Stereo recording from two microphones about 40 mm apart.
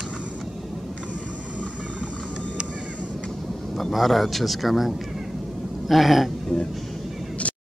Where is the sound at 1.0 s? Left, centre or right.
Right.